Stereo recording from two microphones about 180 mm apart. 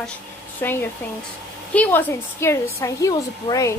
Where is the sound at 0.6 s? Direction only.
10° left (ahead or behind).